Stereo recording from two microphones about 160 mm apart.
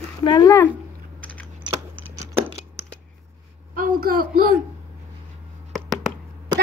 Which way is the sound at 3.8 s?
65° right (ahead or behind).